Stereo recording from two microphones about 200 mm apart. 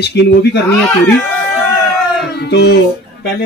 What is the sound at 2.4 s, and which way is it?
Music, 55° left (ahead or behind).